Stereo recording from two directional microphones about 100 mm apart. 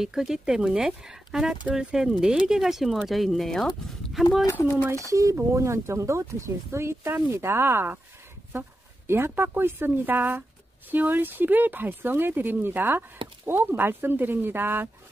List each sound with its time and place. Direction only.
0.0 s speech: 5° right (ahead or behind)
4.5 s speech: 25° left (ahead or behind)
4.9 s speech: 30° right (ahead or behind)